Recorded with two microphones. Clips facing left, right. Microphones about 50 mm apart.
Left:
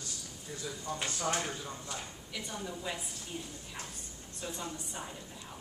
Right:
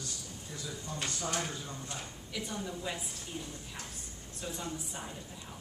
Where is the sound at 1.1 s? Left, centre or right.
Left.